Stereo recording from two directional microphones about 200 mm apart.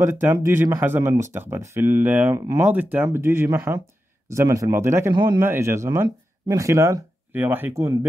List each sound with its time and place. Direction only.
0.0 s speech: 10° right (ahead or behind)